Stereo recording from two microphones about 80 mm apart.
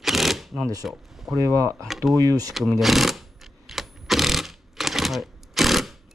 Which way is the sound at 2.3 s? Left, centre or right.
Right.